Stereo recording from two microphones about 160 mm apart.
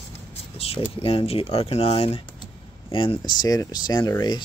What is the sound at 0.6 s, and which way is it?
Speech, 40° left (ahead or behind).